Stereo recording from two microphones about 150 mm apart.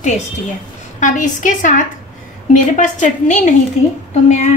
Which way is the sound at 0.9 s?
55° left (ahead or behind).